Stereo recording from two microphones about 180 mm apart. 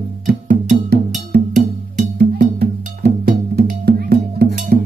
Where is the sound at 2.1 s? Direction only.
65° right (ahead or behind).